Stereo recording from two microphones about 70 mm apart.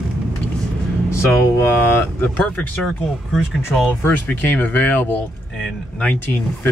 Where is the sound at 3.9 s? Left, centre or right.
Left.